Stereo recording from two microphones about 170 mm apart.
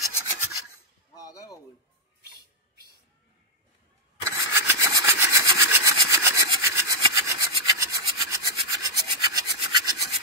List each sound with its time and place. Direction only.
0.0 s rub: 20° right (ahead or behind)
1.1 s a sound: 20° left (ahead or behind)
4.2 s sawing: 15° right (ahead or behind)
7.6 s rub: 20° right (ahead or behind)